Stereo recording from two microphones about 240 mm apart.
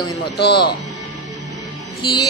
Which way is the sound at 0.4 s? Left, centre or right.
Left.